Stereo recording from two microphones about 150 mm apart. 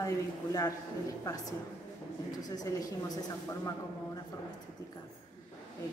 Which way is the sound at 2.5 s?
25° left (ahead or behind).